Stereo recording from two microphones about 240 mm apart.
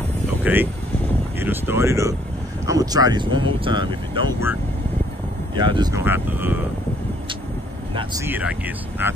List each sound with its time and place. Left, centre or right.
0.4 s speech: centre
7.9 s speech: centre